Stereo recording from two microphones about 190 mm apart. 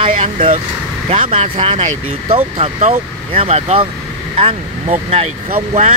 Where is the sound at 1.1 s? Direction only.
30° right (ahead or behind).